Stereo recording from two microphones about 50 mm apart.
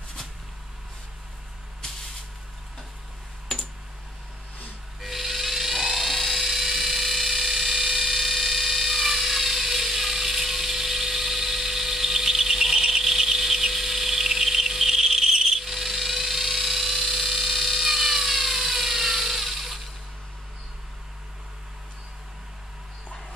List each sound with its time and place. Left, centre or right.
5.0 s dental drill: centre